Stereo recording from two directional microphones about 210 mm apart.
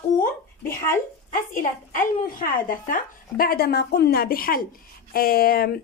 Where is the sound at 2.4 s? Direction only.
40° left (ahead or behind).